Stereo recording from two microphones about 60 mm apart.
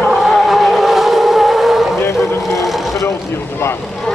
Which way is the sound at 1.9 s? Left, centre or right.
Left.